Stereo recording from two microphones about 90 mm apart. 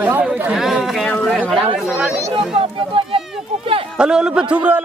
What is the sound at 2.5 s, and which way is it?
Speech, 90° right.